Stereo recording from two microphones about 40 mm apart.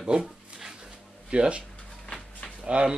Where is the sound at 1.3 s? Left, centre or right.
Right.